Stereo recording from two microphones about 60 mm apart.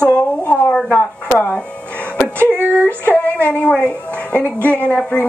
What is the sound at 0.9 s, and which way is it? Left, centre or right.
Speech, left.